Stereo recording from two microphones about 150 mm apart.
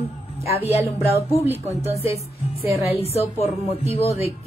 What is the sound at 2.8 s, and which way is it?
A woman's voice, 45° left (ahead or behind).